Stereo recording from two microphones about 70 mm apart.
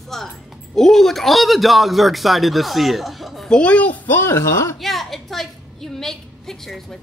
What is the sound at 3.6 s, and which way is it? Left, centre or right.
Speech, centre.